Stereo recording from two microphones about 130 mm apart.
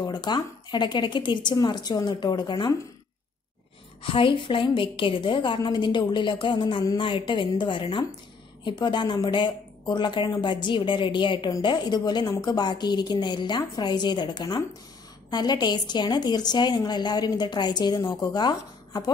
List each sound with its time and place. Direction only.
0.0 s a woman's voice: 35° left (ahead or behind)
4.0 s a woman's voice: 45° left (ahead or behind)